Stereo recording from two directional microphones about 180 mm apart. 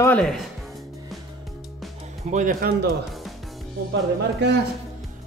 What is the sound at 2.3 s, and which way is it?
Speech, 45° right (ahead or behind).